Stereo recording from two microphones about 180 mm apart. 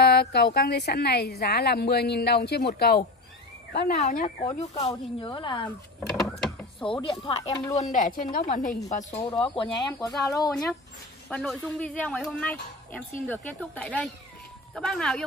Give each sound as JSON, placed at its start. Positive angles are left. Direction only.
{"t": 0.0, "sound": "a sound", "side_deg": 60}
{"t": 0.6, "sound": "a woman's voice", "side_deg": 65}
{"t": 3.9, "sound": "speech", "side_deg": 40}
{"t": 5.9, "sound": "a sound", "side_deg": 0}
{"t": 6.8, "sound": "a woman's voice", "side_deg": 30}
{"t": 8.9, "sound": "speech", "side_deg": 35}
{"t": 10.2, "sound": "speech", "side_deg": 20}
{"t": 10.5, "sound": "speech", "side_deg": 0}